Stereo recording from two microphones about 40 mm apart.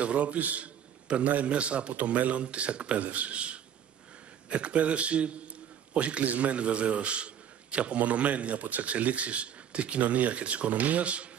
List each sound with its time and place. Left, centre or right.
0.0 s a man's voice: right